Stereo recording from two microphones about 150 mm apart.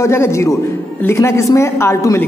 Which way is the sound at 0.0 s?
20° left (ahead or behind).